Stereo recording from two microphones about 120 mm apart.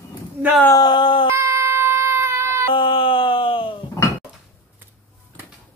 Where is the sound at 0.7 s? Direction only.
40° left (ahead or behind).